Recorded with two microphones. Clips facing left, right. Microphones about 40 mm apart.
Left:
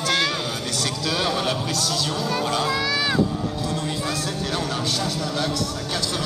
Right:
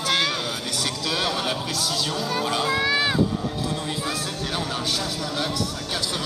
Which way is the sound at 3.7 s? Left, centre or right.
Centre.